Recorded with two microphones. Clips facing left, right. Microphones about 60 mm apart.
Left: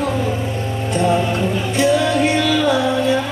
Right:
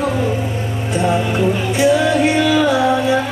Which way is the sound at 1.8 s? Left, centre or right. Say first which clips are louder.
Right 1 dB; centre.